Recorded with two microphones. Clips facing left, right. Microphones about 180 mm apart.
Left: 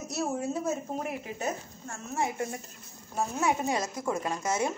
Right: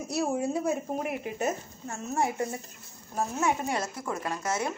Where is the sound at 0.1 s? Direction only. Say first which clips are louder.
Right 3 dB; 15° right (ahead or behind).